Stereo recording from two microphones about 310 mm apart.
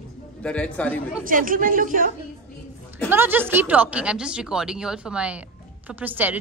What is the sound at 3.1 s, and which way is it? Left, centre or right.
A woman's voice, centre.